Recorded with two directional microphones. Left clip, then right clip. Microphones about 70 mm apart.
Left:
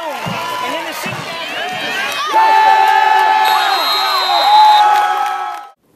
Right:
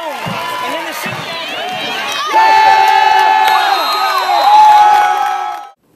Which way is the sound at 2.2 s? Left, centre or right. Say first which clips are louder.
Right 2 dB; right.